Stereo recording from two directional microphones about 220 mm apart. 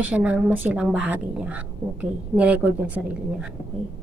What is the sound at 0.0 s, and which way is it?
Speech, 5° right (ahead or behind).